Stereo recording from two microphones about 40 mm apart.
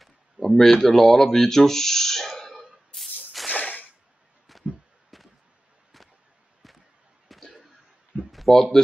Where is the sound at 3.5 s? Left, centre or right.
Left.